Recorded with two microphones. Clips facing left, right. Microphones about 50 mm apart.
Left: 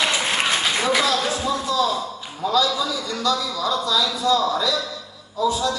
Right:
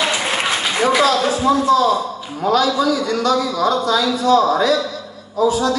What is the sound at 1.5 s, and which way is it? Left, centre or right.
A man's voice, right.